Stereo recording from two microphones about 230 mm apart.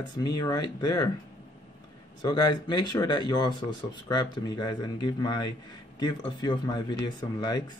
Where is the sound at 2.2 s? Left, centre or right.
Centre.